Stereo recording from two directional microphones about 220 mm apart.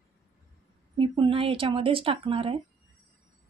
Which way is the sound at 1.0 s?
25° right (ahead or behind).